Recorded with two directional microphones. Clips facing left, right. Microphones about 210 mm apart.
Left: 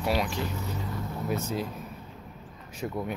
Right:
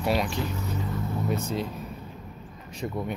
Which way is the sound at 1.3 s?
5° left (ahead or behind).